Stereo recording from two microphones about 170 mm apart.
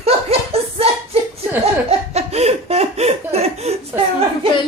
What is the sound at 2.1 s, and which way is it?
Laughter, 40° right (ahead or behind).